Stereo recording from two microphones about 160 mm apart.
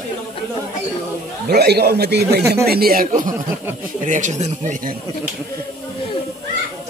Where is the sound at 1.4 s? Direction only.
90° right.